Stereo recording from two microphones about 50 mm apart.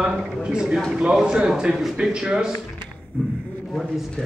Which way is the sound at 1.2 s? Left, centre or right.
Centre.